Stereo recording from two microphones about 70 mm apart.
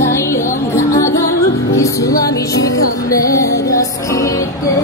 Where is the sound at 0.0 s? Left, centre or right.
Left.